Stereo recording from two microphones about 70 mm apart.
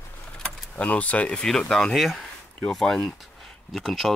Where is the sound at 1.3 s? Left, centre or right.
Centre.